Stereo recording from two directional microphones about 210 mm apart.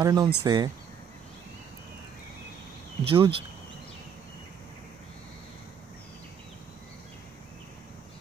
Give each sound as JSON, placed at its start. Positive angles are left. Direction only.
{"t": 0.0, "sound": "speech", "side_deg": -20}
{"t": 3.1, "sound": "speech", "side_deg": -25}